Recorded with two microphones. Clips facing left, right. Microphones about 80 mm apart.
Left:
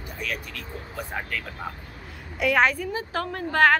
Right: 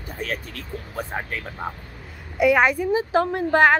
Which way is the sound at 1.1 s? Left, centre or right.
Right.